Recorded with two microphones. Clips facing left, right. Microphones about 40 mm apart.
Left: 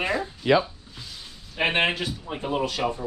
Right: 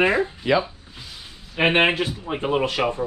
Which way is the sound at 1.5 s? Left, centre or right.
Right.